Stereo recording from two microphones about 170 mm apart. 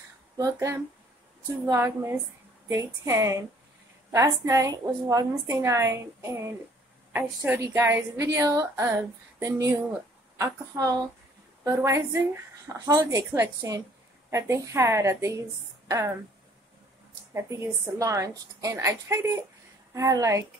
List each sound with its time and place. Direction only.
0.4 s a woman's voice: 15° right (ahead or behind)
17.3 s a woman's voice: 15° right (ahead or behind)